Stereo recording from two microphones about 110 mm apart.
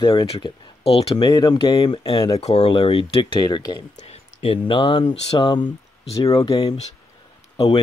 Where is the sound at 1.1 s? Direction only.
45° left (ahead or behind).